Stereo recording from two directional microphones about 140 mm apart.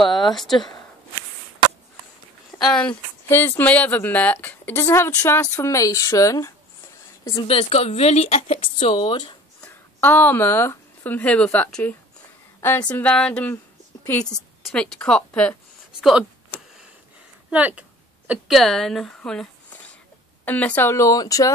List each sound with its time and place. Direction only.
0.3 s speech: centre (ahead or behind)
2.6 s a woman's voice: 5° left (ahead or behind); by 6.5 s 25° left (ahead or behind)
7.3 s speech: 45° left (ahead or behind)
9.7 s a woman's voice: 15° left (ahead or behind)
16.0 s speech: 5° right (ahead or behind)
17.5 s a sound: 10° right (ahead or behind); by 19.9 s 10° left (ahead or behind)
20.4 s speech: 10° left (ahead or behind)